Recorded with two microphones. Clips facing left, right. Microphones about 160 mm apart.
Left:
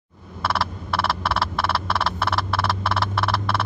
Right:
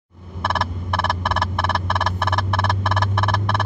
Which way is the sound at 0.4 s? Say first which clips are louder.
Right 1 dB; 20° right (ahead or behind).